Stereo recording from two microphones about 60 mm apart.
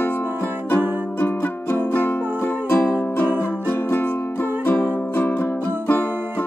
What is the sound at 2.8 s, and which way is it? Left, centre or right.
Music, left.